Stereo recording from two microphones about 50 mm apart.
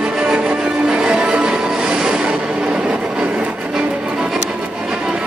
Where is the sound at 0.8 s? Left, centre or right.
Centre.